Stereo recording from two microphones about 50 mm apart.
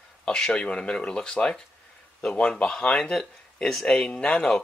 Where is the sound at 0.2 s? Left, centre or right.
Centre.